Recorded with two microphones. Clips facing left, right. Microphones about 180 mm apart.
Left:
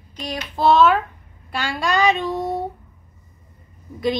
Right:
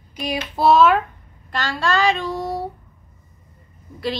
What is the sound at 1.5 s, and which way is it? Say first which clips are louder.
A woman's voice: right 1 dB; 10° left (ahead or behind).